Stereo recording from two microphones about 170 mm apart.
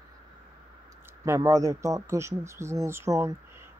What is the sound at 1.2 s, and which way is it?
Speech, 15° right (ahead or behind).